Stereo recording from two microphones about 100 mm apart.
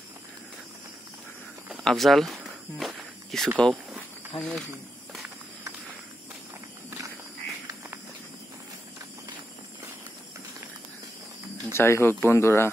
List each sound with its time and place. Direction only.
1.9 s walk: centre (ahead or behind)
4.4 s speech: 5° left (ahead or behind)
11.7 s speech: 25° left (ahead or behind)